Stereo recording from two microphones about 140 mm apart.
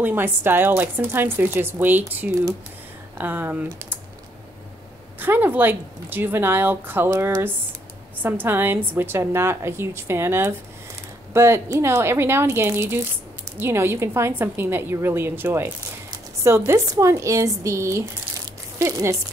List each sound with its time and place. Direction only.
0.0 s speech: 15° right (ahead or behind)
5.2 s speech: 15° right (ahead or behind)